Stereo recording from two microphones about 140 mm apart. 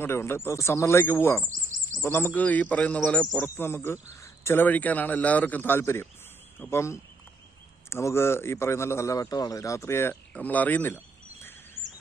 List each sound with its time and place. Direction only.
0.0 s a man's voice: 20° left (ahead or behind)
1.5 s a sound: 65° right (ahead or behind)
2.0 s a man's voice: 15° left (ahead or behind)